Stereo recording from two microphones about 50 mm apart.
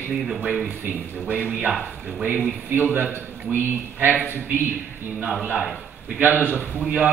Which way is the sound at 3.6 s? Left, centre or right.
Right.